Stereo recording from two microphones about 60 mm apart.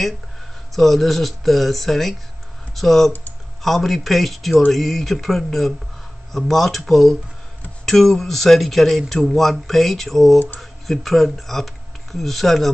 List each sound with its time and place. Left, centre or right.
0.7 s speech: centre